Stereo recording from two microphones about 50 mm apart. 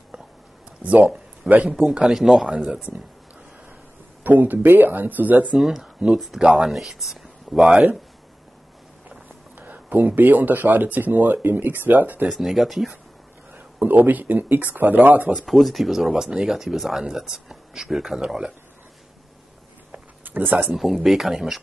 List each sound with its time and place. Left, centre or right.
0.8 s speech: right
1.7 s speech: centre
4.2 s speech: right
5.6 s speech: centre
9.6 s speech: right
12.3 s speech: centre
13.7 s speech: right
15.4 s speech: centre
20.2 s a sound: right
20.7 s speech: centre